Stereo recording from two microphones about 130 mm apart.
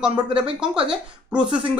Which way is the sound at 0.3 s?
5° right (ahead or behind).